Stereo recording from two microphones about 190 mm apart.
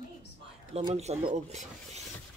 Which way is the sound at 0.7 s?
30° right (ahead or behind).